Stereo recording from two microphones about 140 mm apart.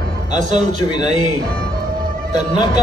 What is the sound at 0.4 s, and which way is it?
Speech, 60° right (ahead or behind).